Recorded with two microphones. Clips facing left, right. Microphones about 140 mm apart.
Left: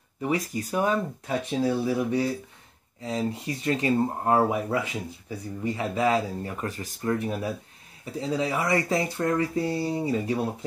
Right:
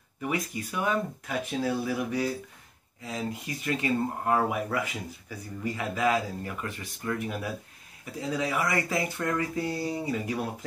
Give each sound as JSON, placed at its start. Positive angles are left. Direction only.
{"t": 0.2, "sound": "speech", "side_deg": 30}